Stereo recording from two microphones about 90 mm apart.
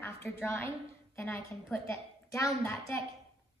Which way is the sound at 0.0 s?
25° left (ahead or behind).